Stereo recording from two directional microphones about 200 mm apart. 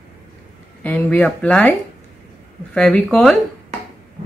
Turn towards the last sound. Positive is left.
turn(degrees=0)  # may be behind; listen again after turning